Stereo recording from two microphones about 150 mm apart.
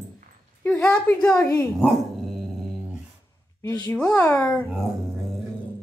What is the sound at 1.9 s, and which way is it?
Dog, centre (ahead or behind).